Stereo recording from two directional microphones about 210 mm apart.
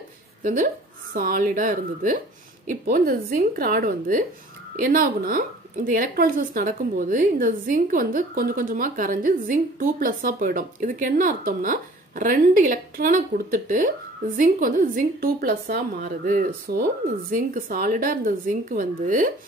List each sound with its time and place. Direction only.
0.4 s a woman's voice: 35° right (ahead or behind)